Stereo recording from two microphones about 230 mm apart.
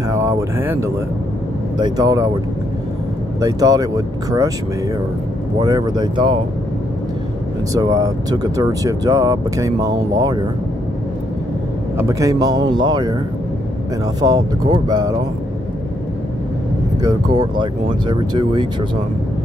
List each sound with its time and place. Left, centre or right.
0.1 s speech: centre
3.3 s speech: centre
5.6 s speech: centre
7.7 s speech: centre
12.0 s speech: centre
14.2 s speech: centre
17.0 s speech: centre